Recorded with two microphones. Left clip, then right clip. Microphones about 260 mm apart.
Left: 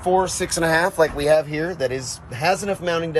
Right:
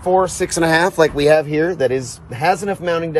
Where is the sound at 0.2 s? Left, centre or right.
Right.